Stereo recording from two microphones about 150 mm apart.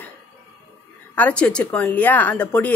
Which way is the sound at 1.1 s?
10° left (ahead or behind).